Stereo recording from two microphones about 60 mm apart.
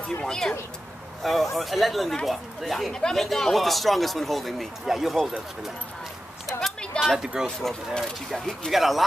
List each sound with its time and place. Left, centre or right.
0.2 s speech: centre
2.9 s speech: centre
7.0 s speech: centre
7.4 s speech: centre